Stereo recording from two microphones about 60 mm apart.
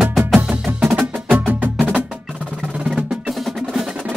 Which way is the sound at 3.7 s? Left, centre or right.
Centre.